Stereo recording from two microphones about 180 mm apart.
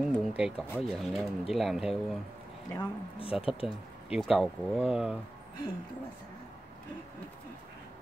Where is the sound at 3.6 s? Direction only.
Centre (ahead or behind).